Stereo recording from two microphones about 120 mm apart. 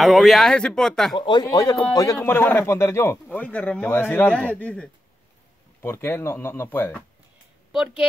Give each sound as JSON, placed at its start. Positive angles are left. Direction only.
{"t": 0.0, "sound": "speech", "side_deg": 0}
{"t": 1.1, "sound": "speech", "side_deg": 45}
{"t": 1.4, "sound": "speech", "side_deg": 35}
{"t": 3.3, "sound": "speech", "side_deg": 10}
{"t": 7.7, "sound": "speech", "side_deg": -5}